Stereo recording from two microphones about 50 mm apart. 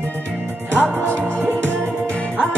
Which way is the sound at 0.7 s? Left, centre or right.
Left.